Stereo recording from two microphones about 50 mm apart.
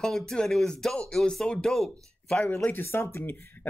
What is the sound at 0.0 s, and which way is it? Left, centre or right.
Speech, centre.